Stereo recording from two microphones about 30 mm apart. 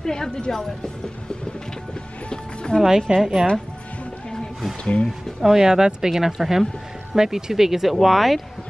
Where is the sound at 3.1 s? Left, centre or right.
Right.